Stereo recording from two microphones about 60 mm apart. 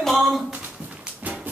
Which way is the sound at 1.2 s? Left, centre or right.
Right.